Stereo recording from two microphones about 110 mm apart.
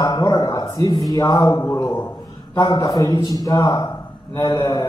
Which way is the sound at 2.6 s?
40° left (ahead or behind).